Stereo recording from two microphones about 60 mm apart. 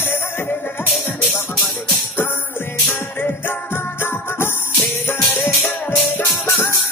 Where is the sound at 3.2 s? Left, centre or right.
Left.